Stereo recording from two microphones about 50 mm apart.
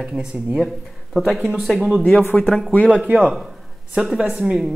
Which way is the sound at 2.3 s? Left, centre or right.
Left.